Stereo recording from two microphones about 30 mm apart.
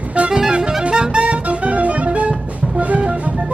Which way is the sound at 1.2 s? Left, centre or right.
Right.